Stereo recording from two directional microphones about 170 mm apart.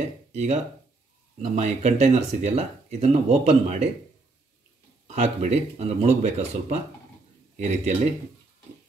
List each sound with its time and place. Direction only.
0.3 s speech: 40° right (ahead or behind)
5.0 s speech: 40° right (ahead or behind)